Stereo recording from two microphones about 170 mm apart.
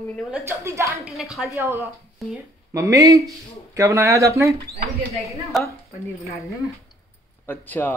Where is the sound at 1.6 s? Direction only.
15° right (ahead or behind).